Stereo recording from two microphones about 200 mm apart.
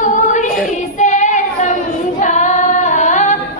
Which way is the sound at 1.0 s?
35° left (ahead or behind).